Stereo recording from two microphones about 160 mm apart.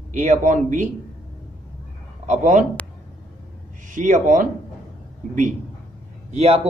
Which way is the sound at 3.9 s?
55° right (ahead or behind).